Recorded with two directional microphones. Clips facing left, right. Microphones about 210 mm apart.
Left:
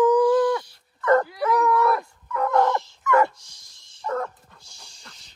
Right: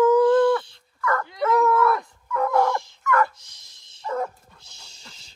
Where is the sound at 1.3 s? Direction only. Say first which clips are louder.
Right 1 dB; centre (ahead or behind).